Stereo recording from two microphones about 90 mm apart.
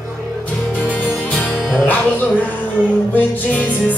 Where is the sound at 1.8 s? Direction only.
20° left (ahead or behind).